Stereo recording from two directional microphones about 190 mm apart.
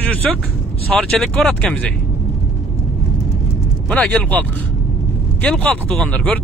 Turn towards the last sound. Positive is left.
turn(degrees=5)  # may be behind; listen again after turning